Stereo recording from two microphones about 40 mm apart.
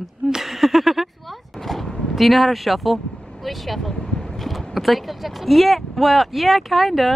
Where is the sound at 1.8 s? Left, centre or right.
Centre.